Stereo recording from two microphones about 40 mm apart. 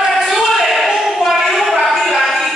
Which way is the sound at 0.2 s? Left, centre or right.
Centre.